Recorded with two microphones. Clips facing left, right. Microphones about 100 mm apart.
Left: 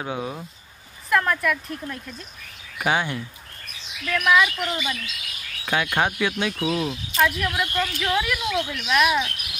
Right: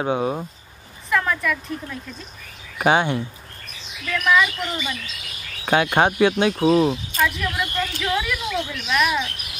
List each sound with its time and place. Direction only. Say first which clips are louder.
0.0 s speech: right 7 dB; 35° right (ahead or behind)
1.1 s speech: even; centre (ahead or behind)
2.8 s speech: right 5 dB; 30° right (ahead or behind)
4.0 s a woman's voice: even; 5° left (ahead or behind)
5.7 s speech: right 5 dB; 40° right (ahead or behind)
7.2 s a woman's voice: left 5 dB; 5° left (ahead or behind)